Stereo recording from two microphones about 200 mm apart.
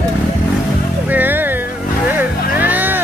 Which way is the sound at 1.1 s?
10° right (ahead or behind).